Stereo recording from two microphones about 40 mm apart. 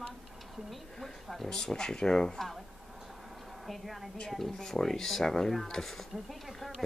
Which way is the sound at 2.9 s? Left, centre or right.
Centre.